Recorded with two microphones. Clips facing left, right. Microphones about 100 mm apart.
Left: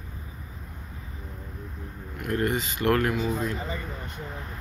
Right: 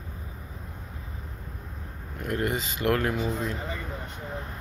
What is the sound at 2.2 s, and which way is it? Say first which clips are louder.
Speech: left 2 dB; 20° right (ahead or behind).